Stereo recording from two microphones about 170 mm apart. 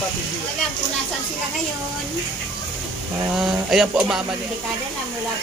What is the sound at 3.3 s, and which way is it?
Speech, 5° right (ahead or behind).